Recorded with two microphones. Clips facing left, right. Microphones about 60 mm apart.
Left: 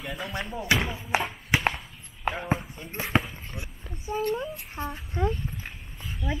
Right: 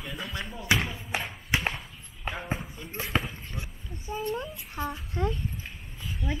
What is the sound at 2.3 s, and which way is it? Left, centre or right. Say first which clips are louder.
Speech: left 4 dB; centre.